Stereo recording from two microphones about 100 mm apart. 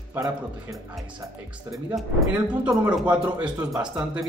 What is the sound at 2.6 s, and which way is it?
Speech, 10° right (ahead or behind).